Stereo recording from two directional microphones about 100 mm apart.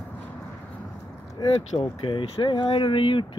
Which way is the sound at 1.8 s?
60° left (ahead or behind).